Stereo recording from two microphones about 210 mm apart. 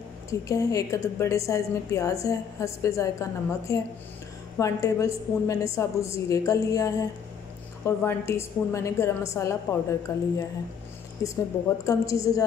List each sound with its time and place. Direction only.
0.3 s a woman's voice: 15° left (ahead or behind)